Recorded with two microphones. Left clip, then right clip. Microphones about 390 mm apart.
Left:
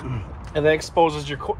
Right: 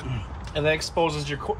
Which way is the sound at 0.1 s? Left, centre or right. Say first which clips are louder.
Left 5 dB; centre.